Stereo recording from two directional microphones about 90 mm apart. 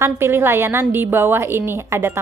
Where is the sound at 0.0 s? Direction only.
30° right (ahead or behind).